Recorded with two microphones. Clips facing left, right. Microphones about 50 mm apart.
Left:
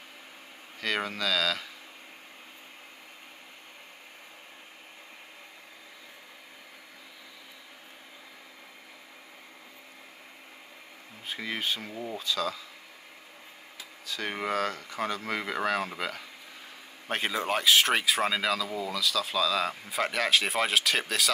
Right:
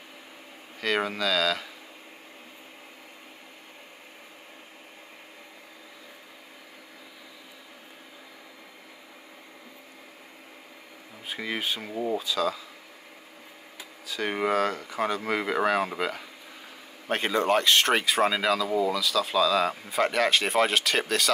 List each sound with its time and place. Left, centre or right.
0.7 s speech: centre
11.2 s speech: centre
11.9 s speech: centre
12.2 s speech: centre
14.0 s speech: centre